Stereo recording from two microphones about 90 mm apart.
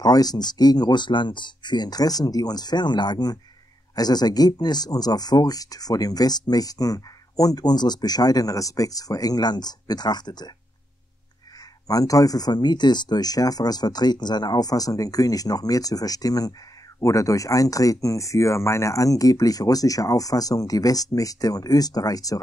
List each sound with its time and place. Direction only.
0.0 s speech: 45° left (ahead or behind)
11.9 s speech: 40° left (ahead or behind)